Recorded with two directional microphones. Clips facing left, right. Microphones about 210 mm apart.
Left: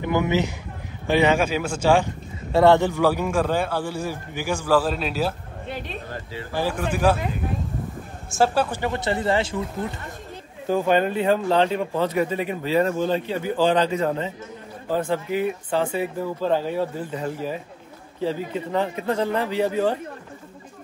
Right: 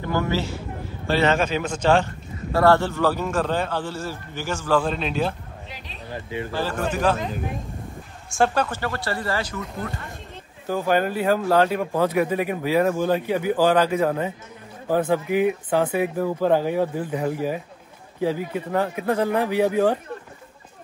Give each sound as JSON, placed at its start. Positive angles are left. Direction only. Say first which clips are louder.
{"t": 0.0, "sound": "a man's voice", "louder": "left 3 dB", "side_deg": 15}
{"t": 2.5, "sound": "a man's voice", "louder": "left 2 dB", "side_deg": 20}
{"t": 5.7, "sound": "speech", "louder": "left 14 dB", "side_deg": 55}
{"t": 6.5, "sound": "a man's voice", "louder": "left 2 dB", "side_deg": 15}
{"t": 8.3, "sound": "speech", "louder": "left 1 dB", "side_deg": 0}
{"t": 8.6, "sound": "speech", "louder": "left 3 dB", "side_deg": 15}
{"t": 10.7, "sound": "speech", "louder": "left 2 dB", "side_deg": -5}